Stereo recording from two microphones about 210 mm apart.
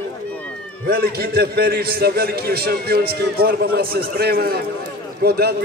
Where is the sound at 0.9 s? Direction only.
45° right (ahead or behind).